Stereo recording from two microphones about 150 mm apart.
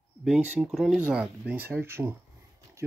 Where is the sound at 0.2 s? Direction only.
5° right (ahead or behind).